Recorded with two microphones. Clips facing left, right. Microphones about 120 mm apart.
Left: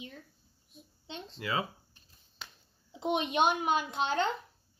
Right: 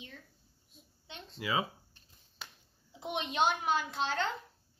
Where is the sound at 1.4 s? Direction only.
15° right (ahead or behind).